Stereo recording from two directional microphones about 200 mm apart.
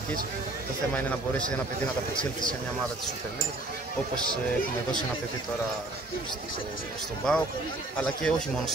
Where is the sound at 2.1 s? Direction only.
25° left (ahead or behind).